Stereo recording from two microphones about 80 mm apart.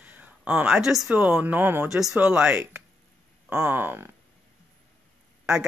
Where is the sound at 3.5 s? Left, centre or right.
Right.